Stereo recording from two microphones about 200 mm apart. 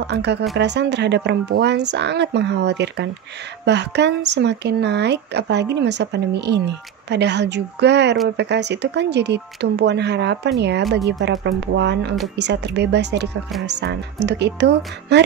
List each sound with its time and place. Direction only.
0.0 s speech: 55° right (ahead or behind)